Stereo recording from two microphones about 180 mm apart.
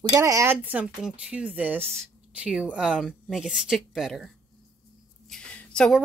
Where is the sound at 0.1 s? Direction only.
15° right (ahead or behind); by 4.3 s centre (ahead or behind).